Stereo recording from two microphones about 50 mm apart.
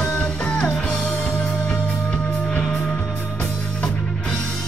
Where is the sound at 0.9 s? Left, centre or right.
Centre.